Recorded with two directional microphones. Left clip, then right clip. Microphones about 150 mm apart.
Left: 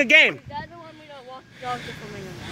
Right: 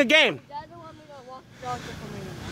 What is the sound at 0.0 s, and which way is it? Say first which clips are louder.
Speech: left 3 dB; 15° right (ahead or behind).